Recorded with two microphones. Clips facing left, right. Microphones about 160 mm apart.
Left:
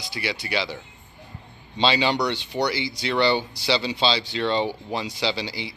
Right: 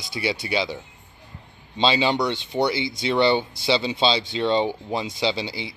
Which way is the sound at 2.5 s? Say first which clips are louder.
Right 4 dB; 15° right (ahead or behind).